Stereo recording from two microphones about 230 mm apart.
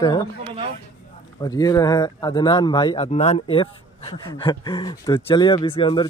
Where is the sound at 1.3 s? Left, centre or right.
Centre.